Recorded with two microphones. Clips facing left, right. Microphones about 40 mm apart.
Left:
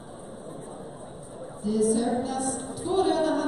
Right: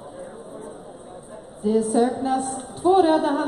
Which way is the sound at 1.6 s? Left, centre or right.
Right.